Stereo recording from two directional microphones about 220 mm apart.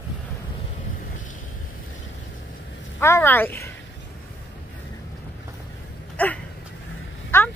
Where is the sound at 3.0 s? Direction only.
10° left (ahead or behind).